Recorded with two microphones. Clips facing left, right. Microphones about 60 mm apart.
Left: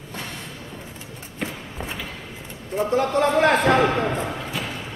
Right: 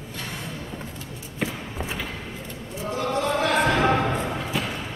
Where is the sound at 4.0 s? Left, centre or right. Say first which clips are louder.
Left 1 dB; centre.